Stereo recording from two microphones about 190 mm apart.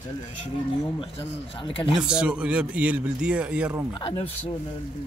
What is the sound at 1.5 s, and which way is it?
Speech, 25° left (ahead or behind).